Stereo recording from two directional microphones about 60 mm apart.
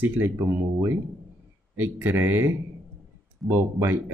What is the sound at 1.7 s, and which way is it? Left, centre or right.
Speech, right.